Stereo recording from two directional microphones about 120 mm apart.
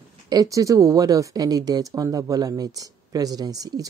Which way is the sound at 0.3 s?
30° right (ahead or behind).